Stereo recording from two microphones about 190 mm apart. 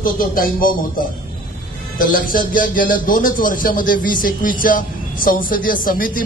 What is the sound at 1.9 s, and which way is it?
A man's voice, 45° left (ahead or behind).